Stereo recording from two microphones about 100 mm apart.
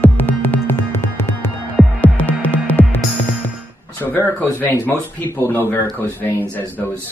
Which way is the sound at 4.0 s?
20° left (ahead or behind).